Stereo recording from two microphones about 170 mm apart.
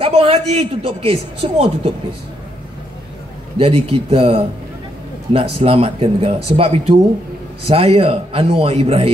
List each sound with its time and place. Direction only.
0.0 s a woman's voice: 35° right (ahead or behind)
3.5 s a woman's voice: 35° right (ahead or behind)